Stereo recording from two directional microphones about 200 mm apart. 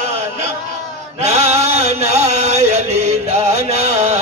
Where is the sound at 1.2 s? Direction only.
35° right (ahead or behind).